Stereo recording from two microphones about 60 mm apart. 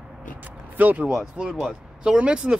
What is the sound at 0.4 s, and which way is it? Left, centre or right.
Vehicle, right.